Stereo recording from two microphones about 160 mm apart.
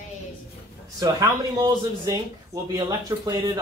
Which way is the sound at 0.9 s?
20° right (ahead or behind).